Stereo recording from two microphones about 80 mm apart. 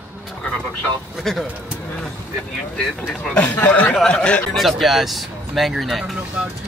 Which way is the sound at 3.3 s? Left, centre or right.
Centre.